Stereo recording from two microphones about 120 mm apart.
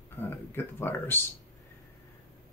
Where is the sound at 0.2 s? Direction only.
20° left (ahead or behind).